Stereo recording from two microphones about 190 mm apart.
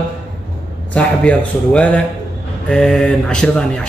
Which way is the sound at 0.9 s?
5° left (ahead or behind).